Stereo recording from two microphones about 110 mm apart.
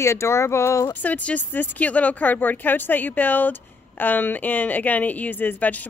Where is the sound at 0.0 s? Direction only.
25° left (ahead or behind).